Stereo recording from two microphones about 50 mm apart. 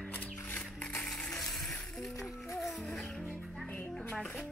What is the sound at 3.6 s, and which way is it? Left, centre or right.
Music, left.